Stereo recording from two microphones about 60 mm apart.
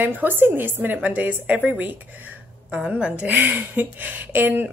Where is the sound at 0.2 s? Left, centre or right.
Right.